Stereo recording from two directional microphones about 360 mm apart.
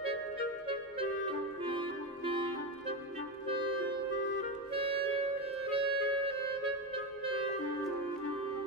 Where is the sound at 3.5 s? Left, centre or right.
Centre.